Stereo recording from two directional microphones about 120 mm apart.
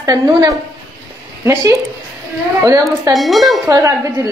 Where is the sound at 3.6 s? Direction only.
30° right (ahead or behind).